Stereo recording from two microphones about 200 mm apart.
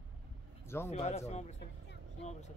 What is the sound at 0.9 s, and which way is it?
Speech, 35° left (ahead or behind).